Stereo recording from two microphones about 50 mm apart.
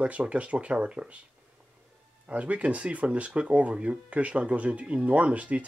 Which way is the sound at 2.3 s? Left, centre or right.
Right.